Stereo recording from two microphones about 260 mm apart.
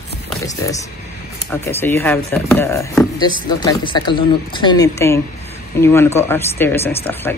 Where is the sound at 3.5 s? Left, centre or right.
Centre.